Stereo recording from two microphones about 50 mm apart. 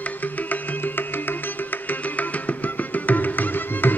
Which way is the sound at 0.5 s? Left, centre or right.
Left.